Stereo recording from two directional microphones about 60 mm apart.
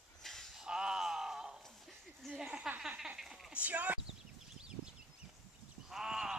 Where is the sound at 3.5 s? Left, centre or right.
Right.